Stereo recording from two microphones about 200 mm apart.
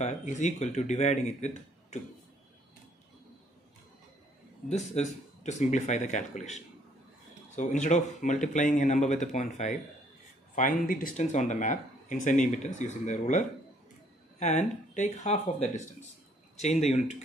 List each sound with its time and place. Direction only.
0.0 s speech: 35° left (ahead or behind)
4.9 s speech: 35° left (ahead or behind)